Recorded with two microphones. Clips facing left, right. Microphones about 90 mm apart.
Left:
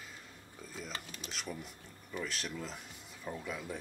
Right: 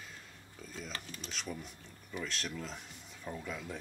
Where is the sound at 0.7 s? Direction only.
5° left (ahead or behind).